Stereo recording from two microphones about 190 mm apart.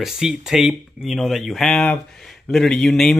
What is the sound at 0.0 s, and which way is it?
Speech, 5° right (ahead or behind).